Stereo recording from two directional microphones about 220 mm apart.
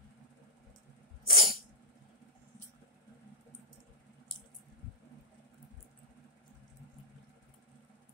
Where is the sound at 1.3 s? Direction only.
25° left (ahead or behind).